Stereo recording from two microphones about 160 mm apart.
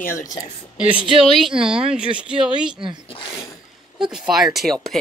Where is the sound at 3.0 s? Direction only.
35° left (ahead or behind).